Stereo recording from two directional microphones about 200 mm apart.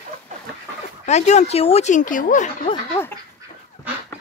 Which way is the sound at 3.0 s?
10° left (ahead or behind).